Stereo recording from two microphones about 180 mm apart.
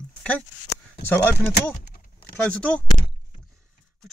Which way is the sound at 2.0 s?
50° left (ahead or behind).